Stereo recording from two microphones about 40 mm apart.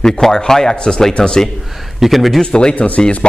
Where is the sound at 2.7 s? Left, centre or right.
Left.